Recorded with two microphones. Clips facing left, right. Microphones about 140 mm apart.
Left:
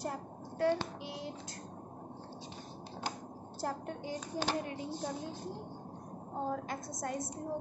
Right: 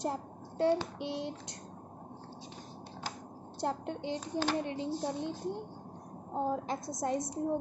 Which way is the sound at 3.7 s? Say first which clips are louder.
Right 4 dB; 25° right (ahead or behind).